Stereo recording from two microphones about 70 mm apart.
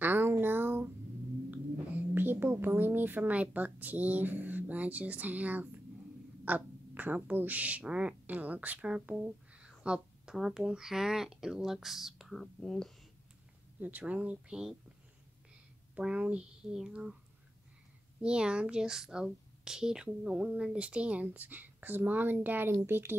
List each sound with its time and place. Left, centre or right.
0.0 s a sound: right
2.1 s a woman's voice: right; by 12.4 s centre
12.6 s speech: centre
13.7 s a woman's voice: right
16.0 s speech: centre
18.2 s speech: centre; by 23.1 s right